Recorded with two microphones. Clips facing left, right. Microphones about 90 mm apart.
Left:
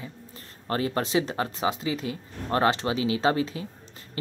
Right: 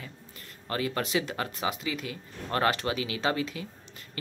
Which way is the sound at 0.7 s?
30° left (ahead or behind).